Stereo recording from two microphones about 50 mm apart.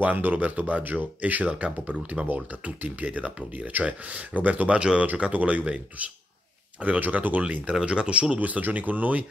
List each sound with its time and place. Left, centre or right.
0.0 s speech: right
4.7 s speech: centre
5.3 s speech: right